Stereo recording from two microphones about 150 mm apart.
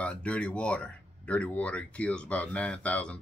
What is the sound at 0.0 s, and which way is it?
Speech, 10° left (ahead or behind).